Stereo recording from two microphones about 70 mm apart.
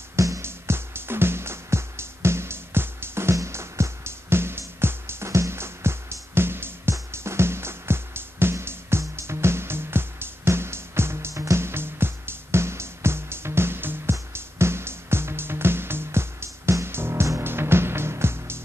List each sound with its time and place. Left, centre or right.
0.1 s music: right